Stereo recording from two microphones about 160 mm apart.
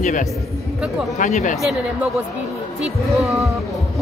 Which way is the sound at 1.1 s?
50° left (ahead or behind).